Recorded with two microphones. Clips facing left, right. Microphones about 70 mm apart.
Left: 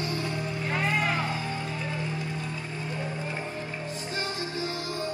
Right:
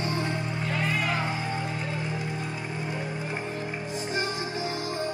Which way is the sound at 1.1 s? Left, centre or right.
Right.